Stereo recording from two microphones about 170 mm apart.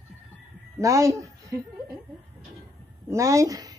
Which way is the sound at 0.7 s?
20° right (ahead or behind).